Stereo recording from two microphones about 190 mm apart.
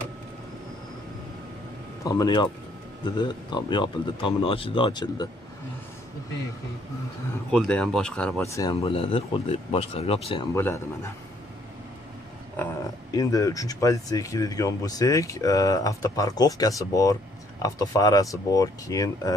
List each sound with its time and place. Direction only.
2.0 s speech: 20° left (ahead or behind)
7.5 s speech: 5° left (ahead or behind)
8.5 s speech: 15° left (ahead or behind)
8.8 s speech: 30° left (ahead or behind)
10.5 s speech: 15° left (ahead or behind)
13.1 s speech: 20° left (ahead or behind)